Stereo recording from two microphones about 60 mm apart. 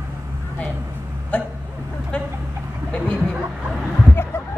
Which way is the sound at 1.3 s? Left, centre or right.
Left.